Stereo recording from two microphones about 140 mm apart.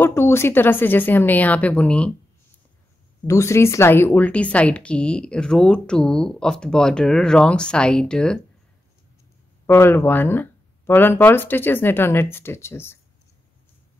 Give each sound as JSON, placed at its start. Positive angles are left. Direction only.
{"t": 0.0, "sound": "speech", "side_deg": 20}
{"t": 3.3, "sound": "speech", "side_deg": 20}
{"t": 9.7, "sound": "speech", "side_deg": 15}